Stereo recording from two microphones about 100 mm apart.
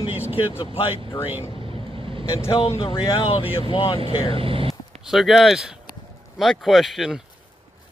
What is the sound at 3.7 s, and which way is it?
Speech, 60° left (ahead or behind).